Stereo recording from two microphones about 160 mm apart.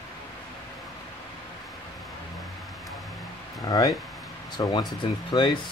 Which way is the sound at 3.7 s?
20° left (ahead or behind).